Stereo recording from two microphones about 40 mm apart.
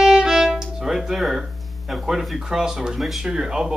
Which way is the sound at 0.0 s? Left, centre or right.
Centre.